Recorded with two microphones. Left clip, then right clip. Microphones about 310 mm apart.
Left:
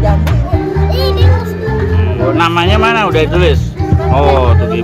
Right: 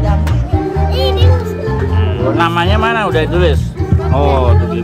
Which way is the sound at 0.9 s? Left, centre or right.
Centre.